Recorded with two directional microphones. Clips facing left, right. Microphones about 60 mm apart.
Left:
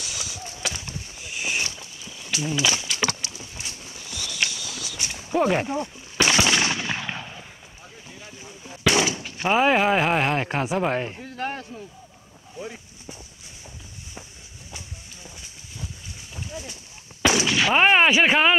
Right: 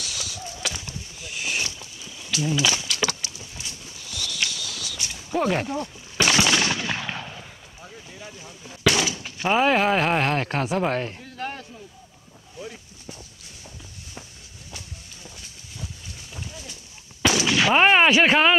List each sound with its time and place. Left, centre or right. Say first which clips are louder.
0.0 s a sound: right 1 dB; centre
2.4 s speech: right 1 dB; centre
3.0 s a sound: even; left
4.1 s clip-clop: right 2 dB; centre
4.4 s walk: left 3 dB; centre
5.3 s speech: left 2 dB; centre
6.2 s gunshot: even; centre
8.1 s boat: right 1 dB; centre
9.5 s speech: even; centre
11.2 s a sound: left 3 dB; left
15.2 s a sound: right 1 dB; centre
17.5 s speech: right 2 dB; centre